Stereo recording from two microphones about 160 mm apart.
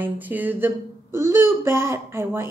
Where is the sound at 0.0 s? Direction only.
10° right (ahead or behind).